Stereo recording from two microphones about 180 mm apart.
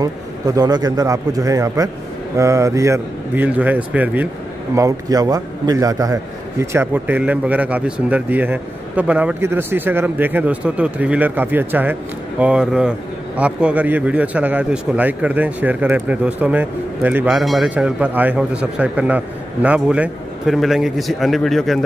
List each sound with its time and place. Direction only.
0.0 s speech: 20° right (ahead or behind)
4.7 s speech: 20° right (ahead or behind); by 21.7 s centre (ahead or behind)